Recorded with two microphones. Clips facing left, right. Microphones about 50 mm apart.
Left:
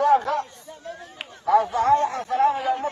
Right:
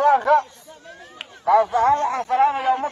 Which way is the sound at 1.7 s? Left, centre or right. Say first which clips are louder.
Right 2 dB; right.